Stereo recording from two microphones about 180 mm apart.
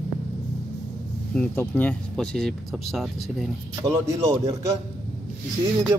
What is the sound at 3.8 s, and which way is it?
Speech, 25° right (ahead or behind).